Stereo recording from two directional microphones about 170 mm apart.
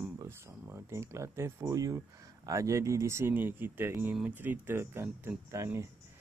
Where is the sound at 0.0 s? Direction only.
15° right (ahead or behind).